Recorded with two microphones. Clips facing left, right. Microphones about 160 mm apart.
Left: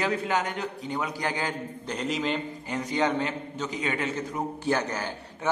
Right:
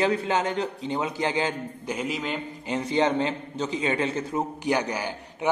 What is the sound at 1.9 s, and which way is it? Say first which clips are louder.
Speech: left 1 dB; 5° right (ahead or behind).